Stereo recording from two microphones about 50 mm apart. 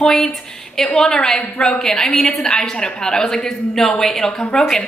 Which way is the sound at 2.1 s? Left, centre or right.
Centre.